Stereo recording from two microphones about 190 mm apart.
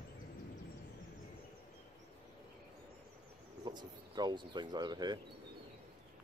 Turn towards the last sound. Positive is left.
turn(degrees=-20)  # may be behind; listen again after turning